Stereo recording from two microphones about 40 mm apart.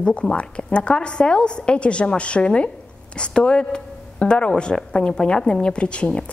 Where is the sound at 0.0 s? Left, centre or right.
Left.